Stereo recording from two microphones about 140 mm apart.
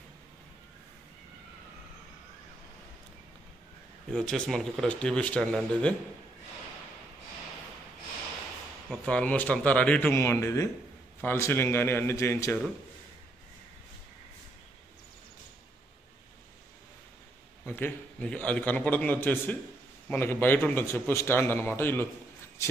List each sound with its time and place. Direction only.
4.1 s a man's voice: 5° left (ahead or behind)
9.0 s a man's voice: 10° left (ahead or behind)
10.1 s a man's voice: 20° left (ahead or behind)
17.6 s a man's voice: 10° left (ahead or behind)